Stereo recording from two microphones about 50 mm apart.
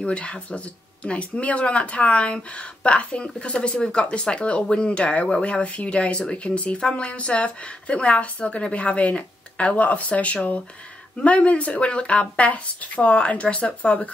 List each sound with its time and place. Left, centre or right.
0.0 s speech: left